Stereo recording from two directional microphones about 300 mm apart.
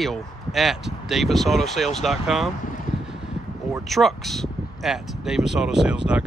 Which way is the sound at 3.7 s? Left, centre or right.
Centre.